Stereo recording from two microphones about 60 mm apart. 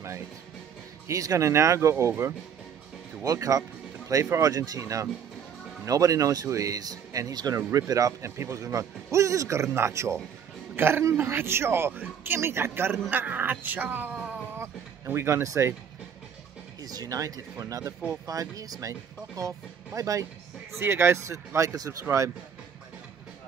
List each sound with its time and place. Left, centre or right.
1.0 s speech: right
3.3 s speech: right
4.1 s speech: right
8.4 s speech: right
10.8 s speech: right
13.1 s speech: right
14.6 s speech: right
16.8 s speech: right
18.2 s speech: right
20.8 s speech: right